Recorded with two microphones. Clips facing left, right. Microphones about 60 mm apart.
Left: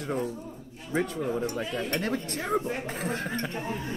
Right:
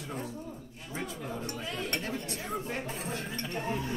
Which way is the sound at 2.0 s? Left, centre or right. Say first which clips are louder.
Left 6 dB; left.